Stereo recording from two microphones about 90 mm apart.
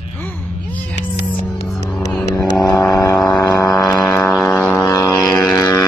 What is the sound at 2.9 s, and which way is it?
Vehicle, 40° left (ahead or behind).